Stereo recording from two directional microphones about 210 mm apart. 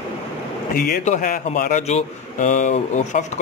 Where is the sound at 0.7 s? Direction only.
45° left (ahead or behind).